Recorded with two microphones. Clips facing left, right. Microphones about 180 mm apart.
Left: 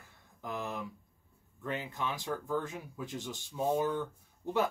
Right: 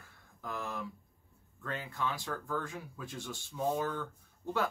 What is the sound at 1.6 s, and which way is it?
Speech, 15° left (ahead or behind).